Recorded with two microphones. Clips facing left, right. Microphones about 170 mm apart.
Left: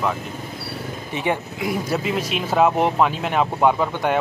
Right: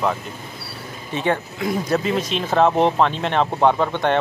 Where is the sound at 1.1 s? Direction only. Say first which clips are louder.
Right 2 dB; 15° left (ahead or behind).